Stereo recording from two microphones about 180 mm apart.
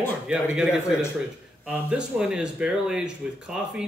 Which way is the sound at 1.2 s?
5° right (ahead or behind).